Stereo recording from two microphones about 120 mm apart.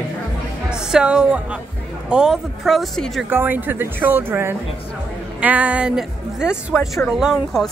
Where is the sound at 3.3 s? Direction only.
15° right (ahead or behind).